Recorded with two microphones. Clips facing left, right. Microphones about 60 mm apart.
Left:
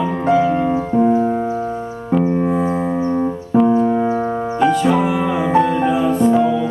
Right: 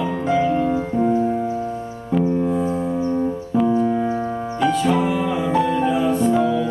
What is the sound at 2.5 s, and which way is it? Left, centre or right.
Music, left.